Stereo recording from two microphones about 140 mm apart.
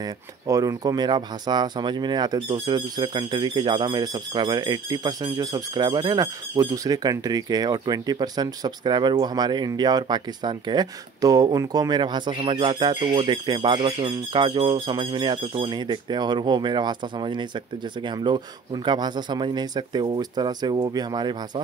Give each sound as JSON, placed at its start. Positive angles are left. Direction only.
{"t": 0.0, "sound": "speech", "side_deg": -25}